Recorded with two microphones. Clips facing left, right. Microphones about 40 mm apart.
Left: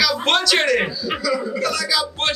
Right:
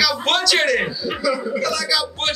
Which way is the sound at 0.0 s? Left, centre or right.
Centre.